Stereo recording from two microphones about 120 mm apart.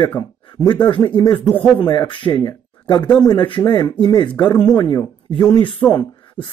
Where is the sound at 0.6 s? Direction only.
40° left (ahead or behind).